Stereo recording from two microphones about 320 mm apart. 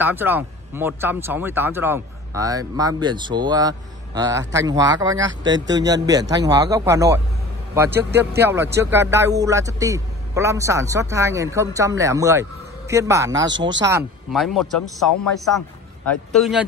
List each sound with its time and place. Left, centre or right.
0.0 s speech: centre
13.6 s speech: right
13.8 s speech: centre
16.1 s speech: centre